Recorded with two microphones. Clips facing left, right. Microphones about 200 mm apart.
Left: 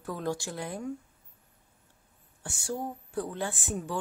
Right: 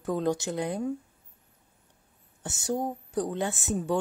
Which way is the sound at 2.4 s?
20° right (ahead or behind).